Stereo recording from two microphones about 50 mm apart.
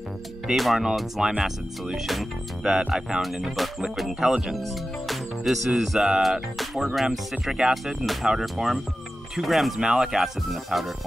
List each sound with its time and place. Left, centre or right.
0.5 s speech: centre
4.3 s speech: centre
4.6 s music: centre
7.1 s speech: centre
9.8 s speech: centre